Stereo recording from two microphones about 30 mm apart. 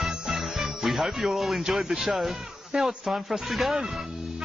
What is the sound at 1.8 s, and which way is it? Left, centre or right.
Speech, centre.